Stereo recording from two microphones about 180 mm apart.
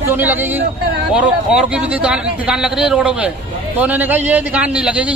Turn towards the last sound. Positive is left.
turn(degrees=-5)  # may be behind; listen again after turning